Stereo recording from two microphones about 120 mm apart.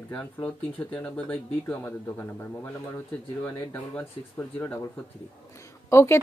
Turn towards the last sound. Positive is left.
turn(degrees=25)  # may be behind; listen again after turning